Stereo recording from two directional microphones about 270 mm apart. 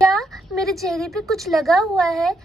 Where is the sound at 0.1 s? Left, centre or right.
Centre.